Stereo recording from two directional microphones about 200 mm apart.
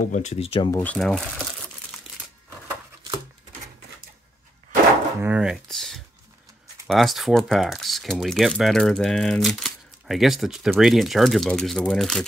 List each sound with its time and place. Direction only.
0.0 s speech: 35° left (ahead or behind)
0.7 s speech: 10° left (ahead or behind)
5.2 s a sound: 5° right (ahead or behind)
6.9 s speech: centre (ahead or behind)